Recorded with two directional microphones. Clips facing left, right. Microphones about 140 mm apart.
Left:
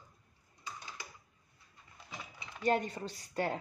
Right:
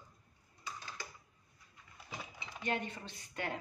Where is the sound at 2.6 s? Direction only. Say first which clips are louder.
Left 7 dB; 40° left (ahead or behind).